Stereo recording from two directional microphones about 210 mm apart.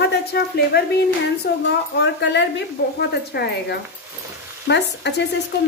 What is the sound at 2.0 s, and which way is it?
Speech, 55° left (ahead or behind).